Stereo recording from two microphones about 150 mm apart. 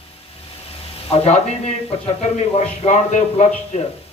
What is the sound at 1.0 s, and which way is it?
A man's voice, 45° left (ahead or behind).